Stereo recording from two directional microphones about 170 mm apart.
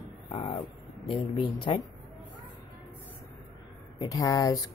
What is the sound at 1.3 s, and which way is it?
Speech, 35° left (ahead or behind).